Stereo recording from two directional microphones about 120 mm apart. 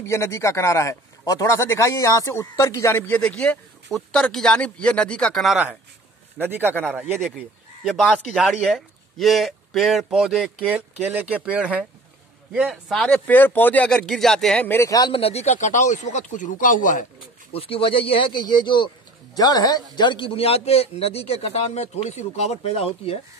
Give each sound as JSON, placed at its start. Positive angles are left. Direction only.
{"t": 0.0, "sound": "speech", "side_deg": 20}
{"t": 6.3, "sound": "speech", "side_deg": -15}
{"t": 6.7, "sound": "speech", "side_deg": 10}
{"t": 11.0, "sound": "speech", "side_deg": -15}
{"t": 14.7, "sound": "speech", "side_deg": 25}
{"t": 15.1, "sound": "speech", "side_deg": 60}
{"t": 17.5, "sound": "speech", "side_deg": 50}